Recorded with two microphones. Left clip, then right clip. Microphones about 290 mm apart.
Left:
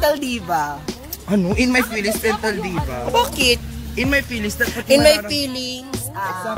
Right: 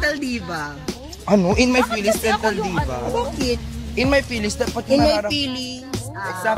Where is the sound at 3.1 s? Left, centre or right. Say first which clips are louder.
Left 8 dB; left.